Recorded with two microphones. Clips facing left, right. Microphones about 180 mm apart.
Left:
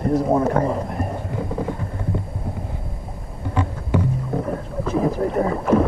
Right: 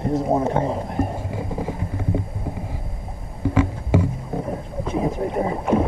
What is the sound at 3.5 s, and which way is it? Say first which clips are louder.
Music: right 2 dB; 90° right.